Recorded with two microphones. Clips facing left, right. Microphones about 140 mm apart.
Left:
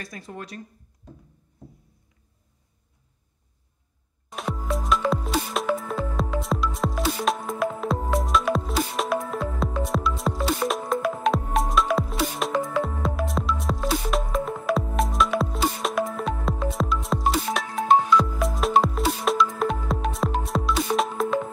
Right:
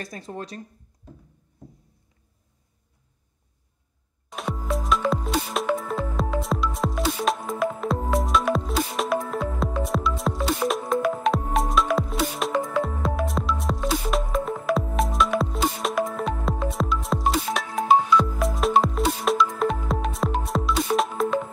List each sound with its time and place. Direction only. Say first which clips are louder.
0.0 s speech: right 3 dB; 30° right (ahead or behind)
4.3 s music: even; centre (ahead or behind)